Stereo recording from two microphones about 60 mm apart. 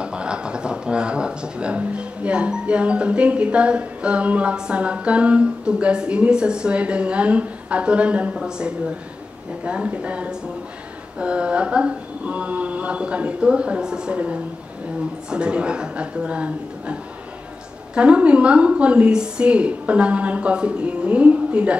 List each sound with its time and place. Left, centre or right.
0.0 s speech: centre
11.1 s a sound: centre
17.9 s speech: centre